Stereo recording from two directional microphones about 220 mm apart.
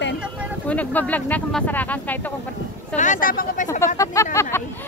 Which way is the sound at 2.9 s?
35° left (ahead or behind).